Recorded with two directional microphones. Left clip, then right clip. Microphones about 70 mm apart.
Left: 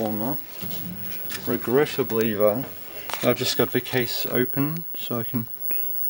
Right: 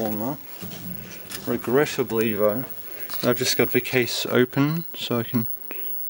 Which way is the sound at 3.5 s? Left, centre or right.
Right.